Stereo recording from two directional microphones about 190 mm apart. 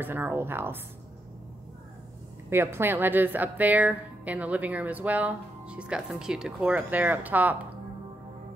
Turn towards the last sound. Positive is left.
turn(degrees=-10)  # may be behind; listen again after turning